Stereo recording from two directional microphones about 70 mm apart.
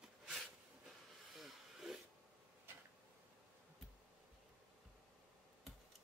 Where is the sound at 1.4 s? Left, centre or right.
Centre.